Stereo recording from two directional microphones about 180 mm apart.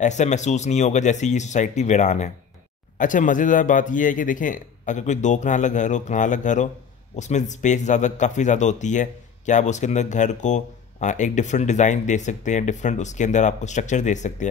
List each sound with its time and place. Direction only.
0.0 s speech: 40° left (ahead or behind)